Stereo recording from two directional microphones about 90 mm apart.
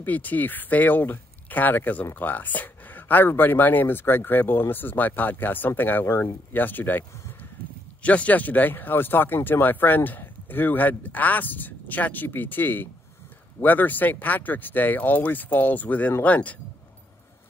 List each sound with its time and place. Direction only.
0.0 s speech: 20° left (ahead or behind)